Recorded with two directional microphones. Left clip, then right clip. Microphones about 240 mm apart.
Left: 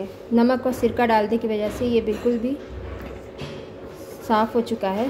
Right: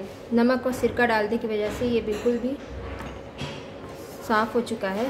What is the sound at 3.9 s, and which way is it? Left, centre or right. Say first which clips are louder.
A woman's voice: left 3 dB; centre.